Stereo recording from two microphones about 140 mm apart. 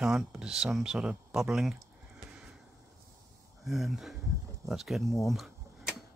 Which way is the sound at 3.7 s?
Centre (ahead or behind).